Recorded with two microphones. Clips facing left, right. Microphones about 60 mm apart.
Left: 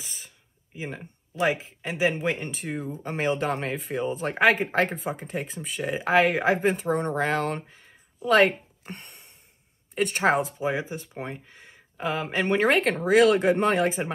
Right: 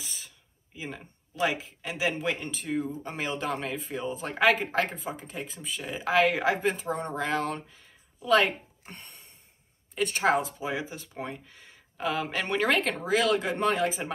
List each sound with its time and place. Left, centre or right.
0.0 s a sound: left
0.7 s speech: left
4.9 s speech: left